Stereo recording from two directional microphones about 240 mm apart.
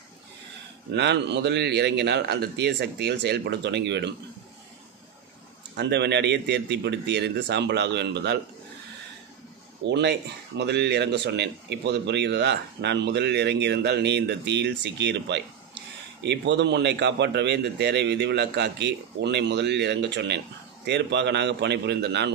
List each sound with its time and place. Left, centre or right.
0.9 s speech: right
5.8 s speech: right
9.8 s speech: right